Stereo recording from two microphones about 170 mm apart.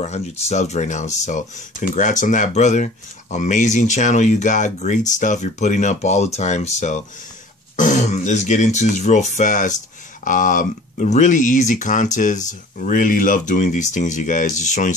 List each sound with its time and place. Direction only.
0.0 s speech: 40° left (ahead or behind)